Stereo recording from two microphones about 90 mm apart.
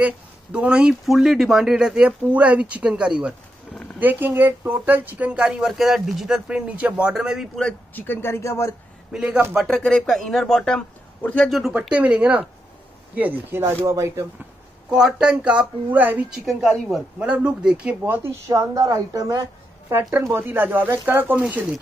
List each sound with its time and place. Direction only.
0.0 s speech: 10° right (ahead or behind)
4.0 s speech: 20° right (ahead or behind)
7.9 s speech: 25° left (ahead or behind)
9.1 s speech: 10° right (ahead or behind)
9.7 s speech: 5° left (ahead or behind)
11.9 s a woman's voice: 15° right (ahead or behind); by 14.2 s 35° right (ahead or behind)
14.9 s speech: 10° right (ahead or behind)
16.4 s speech: centre (ahead or behind)
17.2 s speech: 10° right (ahead or behind)
18.0 s speech: 20° right (ahead or behind)
18.5 s a woman's voice: 40° right (ahead or behind)
19.9 s speech: 25° right (ahead or behind)